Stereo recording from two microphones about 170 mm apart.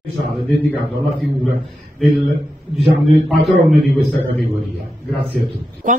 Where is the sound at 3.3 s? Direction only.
Centre (ahead or behind).